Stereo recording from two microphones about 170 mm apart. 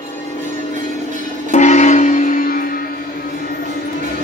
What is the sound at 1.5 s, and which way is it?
Music, 45° left (ahead or behind).